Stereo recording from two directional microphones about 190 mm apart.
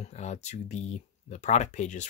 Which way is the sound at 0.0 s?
35° left (ahead or behind).